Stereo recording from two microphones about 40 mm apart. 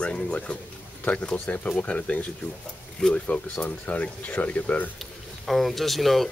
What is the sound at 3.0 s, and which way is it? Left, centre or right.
Speech, left.